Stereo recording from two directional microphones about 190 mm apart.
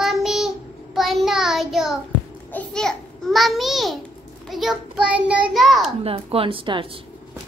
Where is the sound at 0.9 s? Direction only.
Centre (ahead or behind).